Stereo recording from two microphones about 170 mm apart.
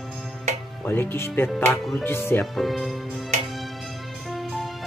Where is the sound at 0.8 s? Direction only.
10° left (ahead or behind).